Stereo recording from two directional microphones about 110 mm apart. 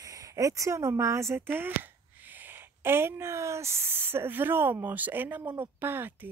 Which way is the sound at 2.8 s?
20° right (ahead or behind).